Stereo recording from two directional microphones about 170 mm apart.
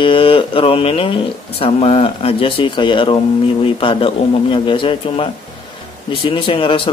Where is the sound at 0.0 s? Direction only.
30° left (ahead or behind).